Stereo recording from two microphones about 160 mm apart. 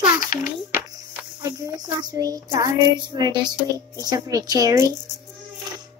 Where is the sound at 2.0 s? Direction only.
25° right (ahead or behind).